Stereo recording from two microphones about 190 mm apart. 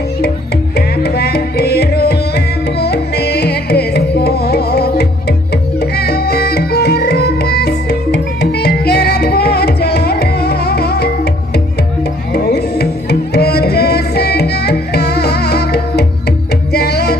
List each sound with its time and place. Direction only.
0.7 s music: 60° left (ahead or behind)
12.4 s music: 55° left (ahead or behind)